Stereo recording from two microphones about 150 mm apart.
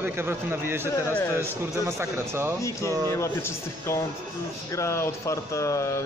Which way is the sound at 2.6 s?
20° left (ahead or behind).